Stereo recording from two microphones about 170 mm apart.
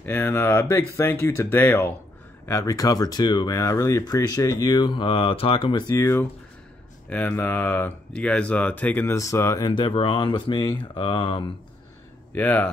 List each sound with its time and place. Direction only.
0.0 s speech: 10° left (ahead or behind); by 11.4 s 30° left (ahead or behind)
12.4 s speech: 10° left (ahead or behind)